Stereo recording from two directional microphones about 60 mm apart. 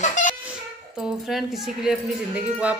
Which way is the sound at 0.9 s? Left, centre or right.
Centre.